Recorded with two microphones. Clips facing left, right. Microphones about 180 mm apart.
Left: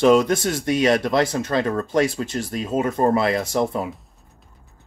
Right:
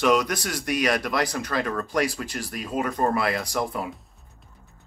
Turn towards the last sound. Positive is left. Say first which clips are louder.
# left 6 dB
turn(degrees=25)  # may be behind; listen again after turning